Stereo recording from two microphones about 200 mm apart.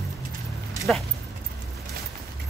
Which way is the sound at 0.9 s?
5° left (ahead or behind).